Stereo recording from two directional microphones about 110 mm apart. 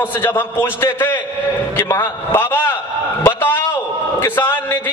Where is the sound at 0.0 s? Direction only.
20° left (ahead or behind).